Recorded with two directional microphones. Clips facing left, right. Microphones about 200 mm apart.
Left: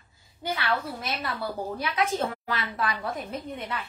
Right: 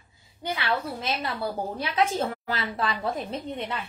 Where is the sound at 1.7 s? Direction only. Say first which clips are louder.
Right 2 dB; 25° right (ahead or behind).